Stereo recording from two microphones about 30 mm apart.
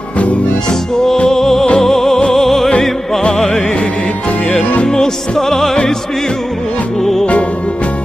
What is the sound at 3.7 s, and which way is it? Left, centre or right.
Music, left.